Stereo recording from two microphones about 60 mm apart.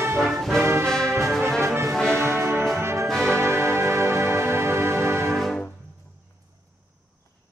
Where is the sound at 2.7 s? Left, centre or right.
Right.